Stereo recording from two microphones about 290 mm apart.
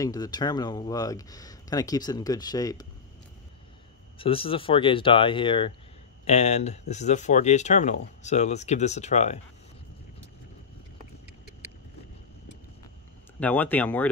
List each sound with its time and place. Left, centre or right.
0.0 s speech: centre
4.2 s speech: centre
13.4 s speech: centre